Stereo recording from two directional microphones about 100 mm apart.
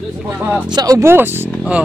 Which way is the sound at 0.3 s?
20° right (ahead or behind).